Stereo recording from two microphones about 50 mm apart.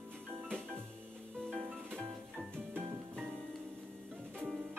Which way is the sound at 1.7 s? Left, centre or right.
Right.